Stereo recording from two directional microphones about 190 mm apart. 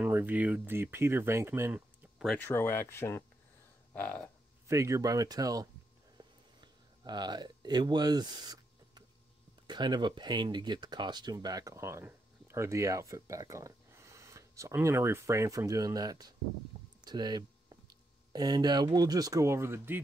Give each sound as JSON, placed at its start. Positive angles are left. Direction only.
{"t": 0.0, "sound": "speech", "side_deg": -10}
{"t": 2.3, "sound": "speech", "side_deg": 10}
{"t": 3.9, "sound": "a sound", "side_deg": 10}
{"t": 4.6, "sound": "speech", "side_deg": -15}
{"t": 6.1, "sound": "a sound", "side_deg": -20}
{"t": 9.7, "sound": "speech", "side_deg": -20}